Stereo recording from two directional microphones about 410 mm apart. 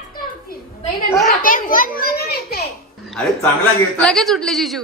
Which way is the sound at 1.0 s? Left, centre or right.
Centre.